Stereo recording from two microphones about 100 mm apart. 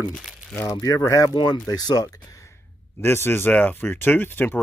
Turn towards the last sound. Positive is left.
turn(degrees=20)  # may be behind; listen again after turning